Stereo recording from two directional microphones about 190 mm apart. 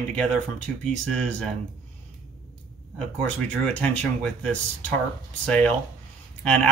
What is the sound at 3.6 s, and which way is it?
Speech, 5° left (ahead or behind).